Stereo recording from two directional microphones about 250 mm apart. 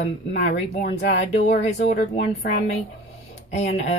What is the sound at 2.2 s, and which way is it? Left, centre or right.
Speech, left.